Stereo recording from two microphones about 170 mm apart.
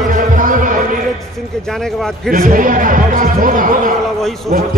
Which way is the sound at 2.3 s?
55° right (ahead or behind).